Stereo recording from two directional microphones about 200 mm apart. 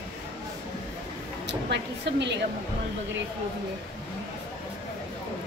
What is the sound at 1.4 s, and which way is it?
Speech, 60° right (ahead or behind).